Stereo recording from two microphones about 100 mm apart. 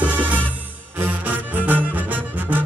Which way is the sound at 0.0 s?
15° right (ahead or behind).